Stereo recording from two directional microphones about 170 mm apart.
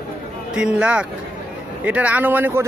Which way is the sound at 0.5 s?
5° right (ahead or behind).